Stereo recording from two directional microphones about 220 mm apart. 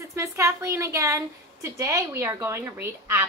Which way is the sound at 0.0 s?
15° right (ahead or behind).